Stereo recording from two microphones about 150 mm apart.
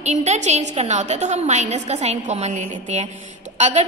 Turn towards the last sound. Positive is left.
turn(degrees=-50)  # may be behind; listen again after turning